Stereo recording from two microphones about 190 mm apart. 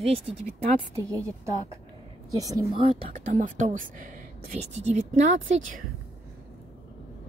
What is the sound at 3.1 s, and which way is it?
Speech, 45° right (ahead or behind).